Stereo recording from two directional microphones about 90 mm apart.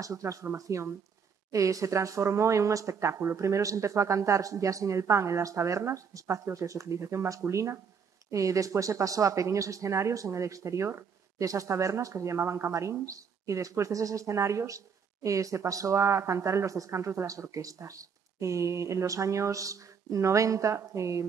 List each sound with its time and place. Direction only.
0.0 s speech: 35° right (ahead or behind)